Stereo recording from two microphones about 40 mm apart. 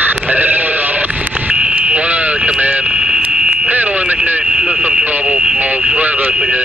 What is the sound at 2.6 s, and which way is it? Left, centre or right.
Vehicle, right.